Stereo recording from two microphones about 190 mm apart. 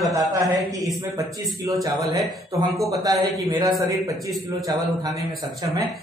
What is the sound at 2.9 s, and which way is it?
A man's voice, 20° right (ahead or behind).